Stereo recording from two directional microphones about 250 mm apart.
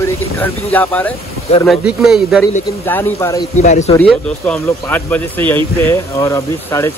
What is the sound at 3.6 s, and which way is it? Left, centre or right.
Speech, left.